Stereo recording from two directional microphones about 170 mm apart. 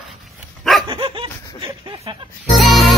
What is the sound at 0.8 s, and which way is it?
Dog, 30° right (ahead or behind).